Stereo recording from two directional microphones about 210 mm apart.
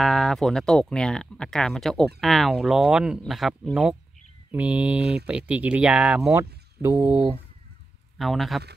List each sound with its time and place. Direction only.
0.0 s speech: centre (ahead or behind)
8.2 s speech: centre (ahead or behind)